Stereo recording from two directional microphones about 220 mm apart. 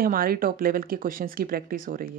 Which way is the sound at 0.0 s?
40° right (ahead or behind).